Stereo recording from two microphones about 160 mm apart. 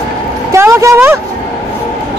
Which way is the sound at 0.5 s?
15° right (ahead or behind).